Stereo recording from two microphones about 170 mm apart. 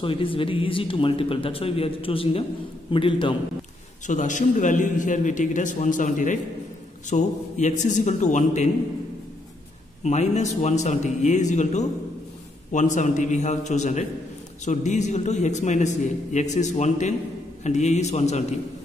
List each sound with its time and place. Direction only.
0.0 s speech: 30° left (ahead or behind)
4.1 s a man's voice: 45° left (ahead or behind)
10.0 s a man's voice: 40° left (ahead or behind)